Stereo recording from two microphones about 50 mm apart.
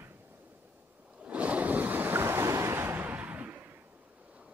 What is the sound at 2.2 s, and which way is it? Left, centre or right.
Waves, right.